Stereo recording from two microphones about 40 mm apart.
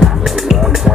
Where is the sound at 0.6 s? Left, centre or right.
Centre.